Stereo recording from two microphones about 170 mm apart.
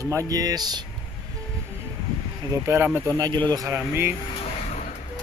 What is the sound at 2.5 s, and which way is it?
Speech, 15° right (ahead or behind).